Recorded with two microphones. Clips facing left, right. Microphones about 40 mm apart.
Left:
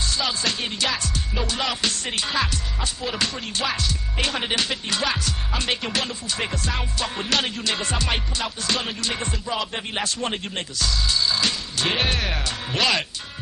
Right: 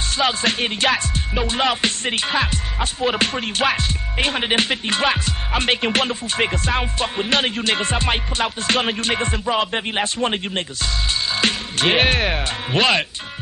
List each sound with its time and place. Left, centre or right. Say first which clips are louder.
0.0 s music: right 5 dB; right